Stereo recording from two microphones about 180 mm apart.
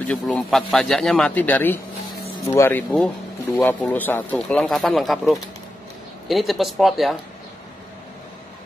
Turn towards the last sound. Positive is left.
turn(degrees=0)  # may be behind; listen again after turning